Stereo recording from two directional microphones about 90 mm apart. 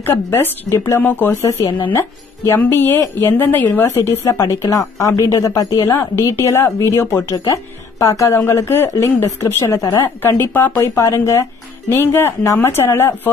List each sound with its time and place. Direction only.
0.0 s a woman's voice: 25° left (ahead or behind)
11.0 s a woman's voice: 30° left (ahead or behind)